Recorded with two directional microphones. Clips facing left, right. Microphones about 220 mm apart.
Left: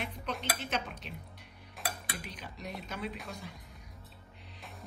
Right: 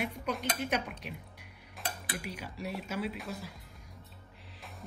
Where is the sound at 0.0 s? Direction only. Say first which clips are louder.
Right 4 dB; 10° right (ahead or behind).